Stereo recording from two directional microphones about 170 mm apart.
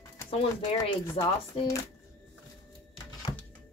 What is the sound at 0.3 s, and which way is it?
Speech, 35° left (ahead or behind).